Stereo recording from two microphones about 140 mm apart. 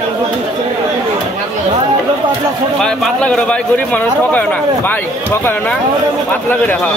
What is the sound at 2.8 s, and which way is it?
A man's voice, 5° left (ahead or behind).